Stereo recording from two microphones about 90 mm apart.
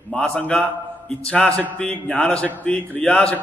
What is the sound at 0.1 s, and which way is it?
A man's voice, 10° left (ahead or behind).